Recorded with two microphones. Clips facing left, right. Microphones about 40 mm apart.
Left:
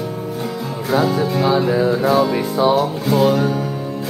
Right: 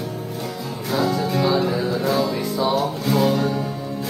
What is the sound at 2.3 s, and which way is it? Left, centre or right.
Music, left.